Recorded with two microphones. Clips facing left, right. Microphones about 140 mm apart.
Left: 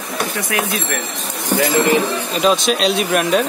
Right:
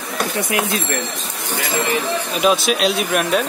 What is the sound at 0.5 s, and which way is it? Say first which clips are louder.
Speech: even; 20° right (ahead or behind).